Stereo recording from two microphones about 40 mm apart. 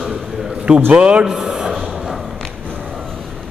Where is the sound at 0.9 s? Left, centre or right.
Right.